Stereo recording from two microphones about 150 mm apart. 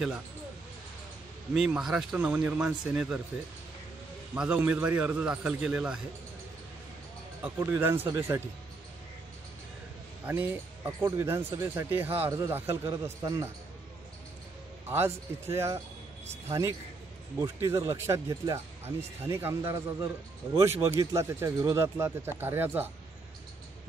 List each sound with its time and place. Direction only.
1.5 s a man's voice: 5° right (ahead or behind)
4.4 s speech: 10° right (ahead or behind)
7.6 s speech: 20° right (ahead or behind)
10.2 s speech: 10° right (ahead or behind)
10.9 s speech: 20° right (ahead or behind)
14.9 s a man's voice: 15° right (ahead or behind)
20.9 s speech: 20° right (ahead or behind)